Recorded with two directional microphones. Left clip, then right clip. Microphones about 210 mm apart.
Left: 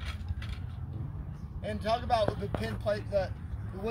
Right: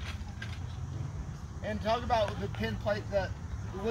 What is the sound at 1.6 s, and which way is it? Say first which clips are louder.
Speech: even; 40° left (ahead or behind).